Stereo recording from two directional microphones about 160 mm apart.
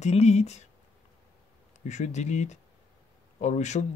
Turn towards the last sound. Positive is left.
turn(degrees=45)  # may be behind; listen again after turning